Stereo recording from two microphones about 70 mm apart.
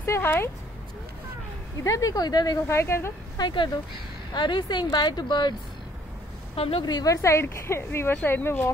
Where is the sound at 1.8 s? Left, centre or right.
Left.